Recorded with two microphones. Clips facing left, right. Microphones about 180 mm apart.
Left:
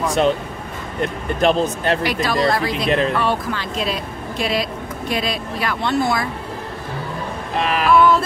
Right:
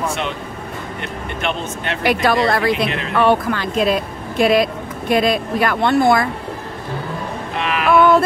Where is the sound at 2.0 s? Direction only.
60° right (ahead or behind).